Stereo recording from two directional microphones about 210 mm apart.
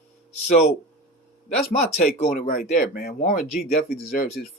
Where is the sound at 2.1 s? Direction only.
40° left (ahead or behind).